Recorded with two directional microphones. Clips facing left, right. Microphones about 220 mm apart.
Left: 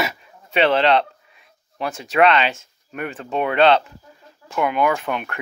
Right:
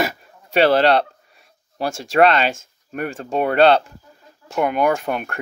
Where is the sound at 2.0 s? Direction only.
40° right (ahead or behind).